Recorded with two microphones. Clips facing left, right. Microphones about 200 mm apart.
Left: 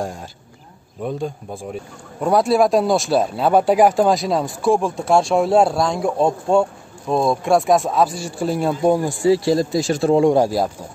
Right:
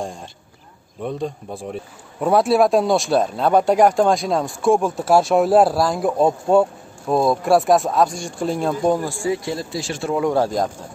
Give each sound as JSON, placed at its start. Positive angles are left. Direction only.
{"t": 1.0, "sound": "a man's voice", "side_deg": 0}
{"t": 9.3, "sound": "speech", "side_deg": 35}
{"t": 10.3, "sound": "speech", "side_deg": 10}